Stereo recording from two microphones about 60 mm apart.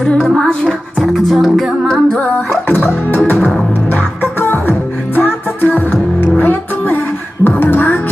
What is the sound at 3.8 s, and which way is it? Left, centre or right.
Music, left.